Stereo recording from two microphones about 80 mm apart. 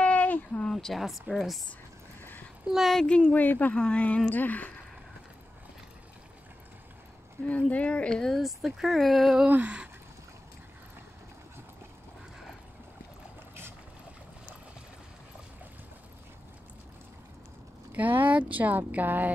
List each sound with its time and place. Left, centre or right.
0.0 s a sound: centre
0.7 s speech: centre
2.7 s speech: centre
7.4 s speech: centre
9.5 s speech: centre
17.9 s speech: right